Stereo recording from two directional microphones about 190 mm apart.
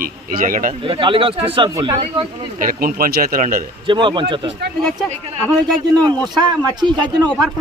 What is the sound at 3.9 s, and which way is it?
Speech, 25° right (ahead or behind).